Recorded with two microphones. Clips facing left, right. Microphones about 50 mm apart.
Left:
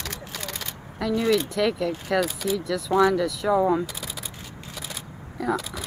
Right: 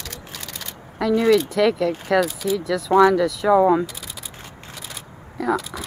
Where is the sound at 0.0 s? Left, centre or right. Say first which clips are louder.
Left 2 dB; centre.